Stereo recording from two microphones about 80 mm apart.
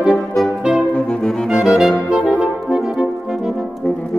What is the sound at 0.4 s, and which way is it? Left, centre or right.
Music, centre.